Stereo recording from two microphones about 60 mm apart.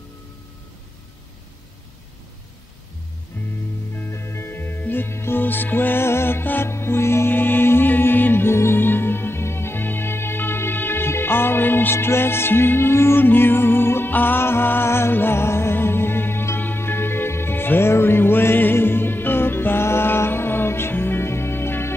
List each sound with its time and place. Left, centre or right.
3.3 s music: left
4.1 s music: left
6.7 s music: left